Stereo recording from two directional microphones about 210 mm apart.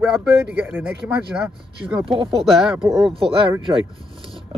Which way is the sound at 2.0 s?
25° right (ahead or behind).